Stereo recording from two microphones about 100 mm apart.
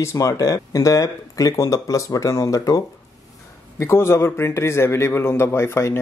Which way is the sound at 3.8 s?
25° left (ahead or behind).